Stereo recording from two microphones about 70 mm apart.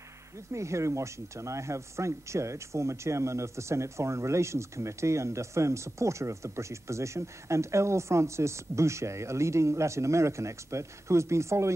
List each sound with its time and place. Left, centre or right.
0.5 s speech: right